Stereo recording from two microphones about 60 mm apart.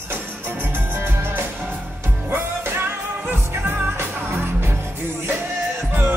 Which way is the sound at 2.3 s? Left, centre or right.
Right.